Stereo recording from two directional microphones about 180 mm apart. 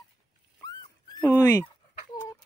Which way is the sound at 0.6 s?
20° left (ahead or behind).